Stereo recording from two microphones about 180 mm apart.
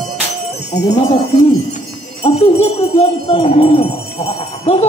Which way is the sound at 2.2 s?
35° left (ahead or behind).